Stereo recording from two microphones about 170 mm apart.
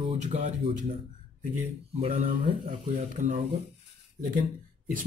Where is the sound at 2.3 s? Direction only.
50° right (ahead or behind).